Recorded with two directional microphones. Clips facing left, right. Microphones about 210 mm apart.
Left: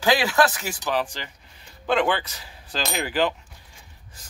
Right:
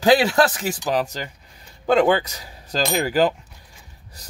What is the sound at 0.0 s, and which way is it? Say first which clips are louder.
Speech: right 4 dB; 40° right (ahead or behind).